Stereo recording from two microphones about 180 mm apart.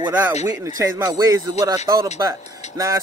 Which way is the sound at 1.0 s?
20° right (ahead or behind).